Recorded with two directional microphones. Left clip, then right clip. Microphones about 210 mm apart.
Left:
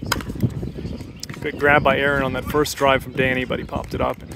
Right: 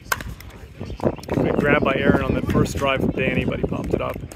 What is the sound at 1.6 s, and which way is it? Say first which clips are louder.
Speech: left 5 dB; 20° left (ahead or behind).